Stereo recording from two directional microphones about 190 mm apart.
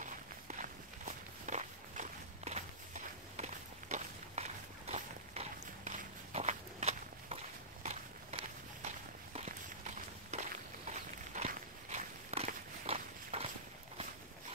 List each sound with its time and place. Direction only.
0.0 s walk: 40° right (ahead or behind)